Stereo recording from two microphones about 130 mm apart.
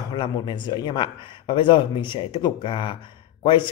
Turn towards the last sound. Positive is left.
turn(degrees=40)  # may be behind; listen again after turning